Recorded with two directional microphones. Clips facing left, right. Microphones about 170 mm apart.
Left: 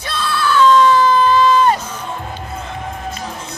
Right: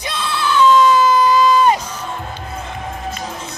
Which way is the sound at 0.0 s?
15° right (ahead or behind).